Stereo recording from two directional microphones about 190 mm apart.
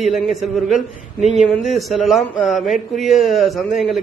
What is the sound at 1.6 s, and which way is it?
A man's voice, centre (ahead or behind).